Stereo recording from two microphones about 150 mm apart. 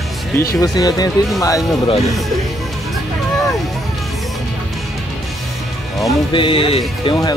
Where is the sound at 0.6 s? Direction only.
25° left (ahead or behind).